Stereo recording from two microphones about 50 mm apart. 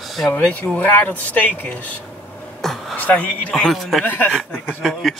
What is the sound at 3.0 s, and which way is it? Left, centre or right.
Speech, left.